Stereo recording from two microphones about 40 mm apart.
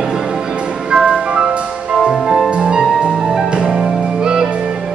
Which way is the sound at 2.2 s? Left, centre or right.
Centre.